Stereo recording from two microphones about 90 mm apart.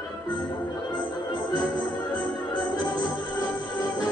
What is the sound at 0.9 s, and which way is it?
Music, 55° left (ahead or behind).